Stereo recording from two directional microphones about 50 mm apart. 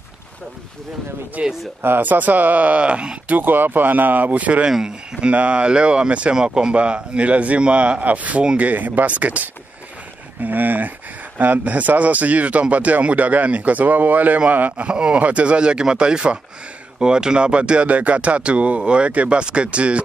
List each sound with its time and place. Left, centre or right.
1.4 s speech: right
1.8 s speech: right
3.3 s speech: right
4.6 s speech: centre
5.3 s speech: right
10.4 s a sound: right
11.3 s speech: right
14.9 s speech: right